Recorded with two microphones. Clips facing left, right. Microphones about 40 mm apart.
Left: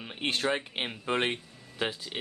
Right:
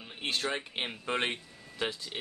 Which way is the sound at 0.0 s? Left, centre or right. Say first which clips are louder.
Left 3 dB; left.